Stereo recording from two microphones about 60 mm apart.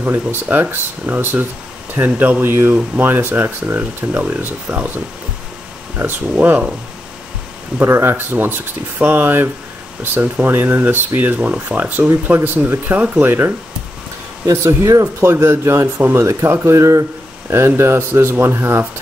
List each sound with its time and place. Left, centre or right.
0.0 s speech: right
4.2 s speech: right
6.3 s speech: right
7.8 s speech: right
14.4 s speech: right
15.2 s speech: right
17.5 s speech: right